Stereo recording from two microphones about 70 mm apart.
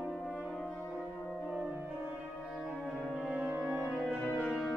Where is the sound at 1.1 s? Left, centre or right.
Centre.